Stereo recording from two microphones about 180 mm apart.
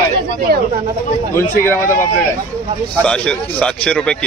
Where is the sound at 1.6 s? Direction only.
15° left (ahead or behind).